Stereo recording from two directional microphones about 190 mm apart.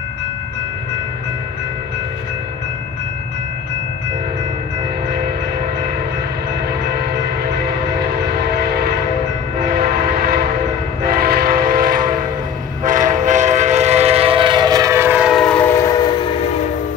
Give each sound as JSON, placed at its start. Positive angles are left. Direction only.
{"t": 11.0, "sound": "train", "side_deg": -50}